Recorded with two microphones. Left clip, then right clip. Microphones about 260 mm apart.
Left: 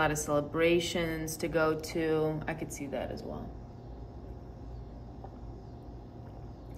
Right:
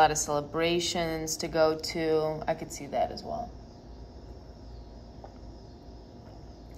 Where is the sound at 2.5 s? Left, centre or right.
Right.